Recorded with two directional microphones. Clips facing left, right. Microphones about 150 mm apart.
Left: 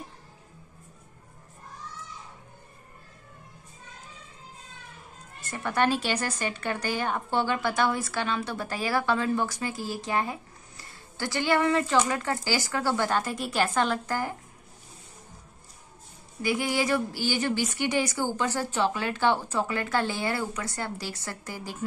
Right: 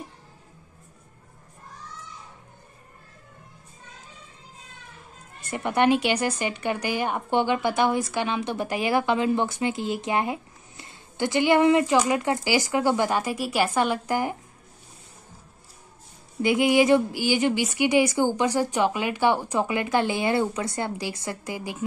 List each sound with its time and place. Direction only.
5.5 s speech: 20° right (ahead or behind)
16.4 s speech: 20° right (ahead or behind)